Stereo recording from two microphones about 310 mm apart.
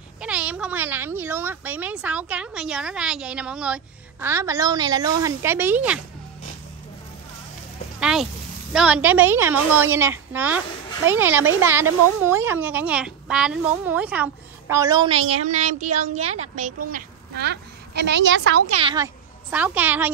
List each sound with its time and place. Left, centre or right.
0.2 s speech: centre
8.0 s a sound: centre
8.7 s speech: centre; by 18.7 s right
18.7 s speech: centre
19.5 s speech: centre